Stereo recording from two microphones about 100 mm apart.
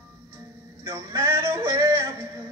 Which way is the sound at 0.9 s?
25° right (ahead or behind).